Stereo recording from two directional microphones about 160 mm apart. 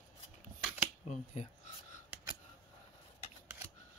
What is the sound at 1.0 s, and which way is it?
Speech, 45° left (ahead or behind).